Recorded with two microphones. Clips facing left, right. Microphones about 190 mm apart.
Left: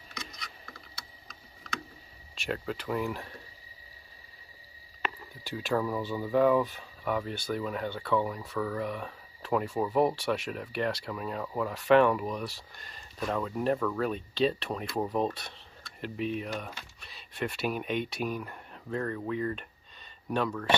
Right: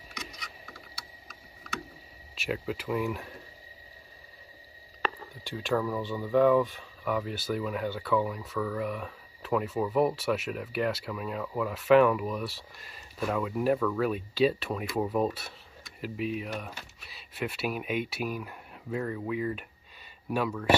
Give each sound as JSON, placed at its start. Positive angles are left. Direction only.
{"t": 0.2, "sound": "a sound", "side_deg": -10}
{"t": 2.3, "sound": "speech", "side_deg": -5}
{"t": 5.4, "sound": "speech", "side_deg": 0}
{"t": 5.8, "sound": "speech", "side_deg": 15}
{"t": 6.0, "sound": "speech", "side_deg": 5}